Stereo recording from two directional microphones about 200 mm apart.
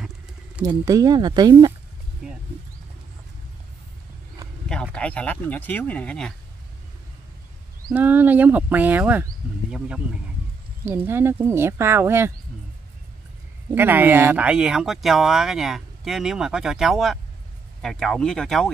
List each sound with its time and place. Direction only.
0.7 s speech: 15° right (ahead or behind)
4.9 s speech: 5° left (ahead or behind)
7.9 s speech: 10° right (ahead or behind)
13.7 s speech: 10° right (ahead or behind)